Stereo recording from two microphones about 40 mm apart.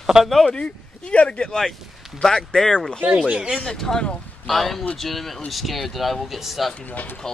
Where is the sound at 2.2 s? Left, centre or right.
Centre.